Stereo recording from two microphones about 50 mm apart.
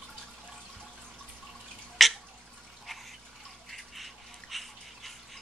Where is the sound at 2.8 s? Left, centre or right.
Centre.